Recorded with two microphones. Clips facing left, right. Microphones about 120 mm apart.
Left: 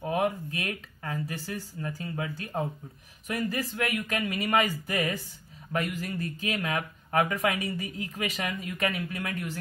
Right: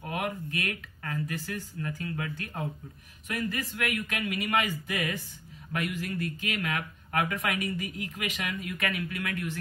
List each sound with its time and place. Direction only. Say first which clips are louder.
0.1 s speech: left 5 dB; 25° left (ahead or behind)